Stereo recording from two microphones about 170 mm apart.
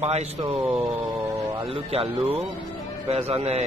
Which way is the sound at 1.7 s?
35° right (ahead or behind).